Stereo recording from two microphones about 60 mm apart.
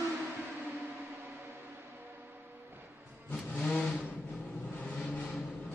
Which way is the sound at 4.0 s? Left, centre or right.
Centre.